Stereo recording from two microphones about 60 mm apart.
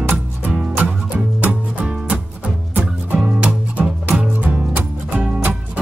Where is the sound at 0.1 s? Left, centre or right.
Right.